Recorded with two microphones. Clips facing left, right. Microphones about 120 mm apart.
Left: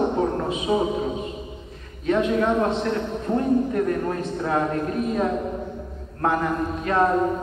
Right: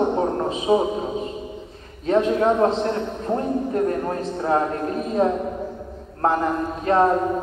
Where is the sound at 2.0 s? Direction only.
35° right (ahead or behind).